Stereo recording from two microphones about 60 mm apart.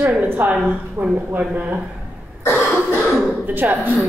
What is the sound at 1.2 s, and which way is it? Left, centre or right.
Speech, right.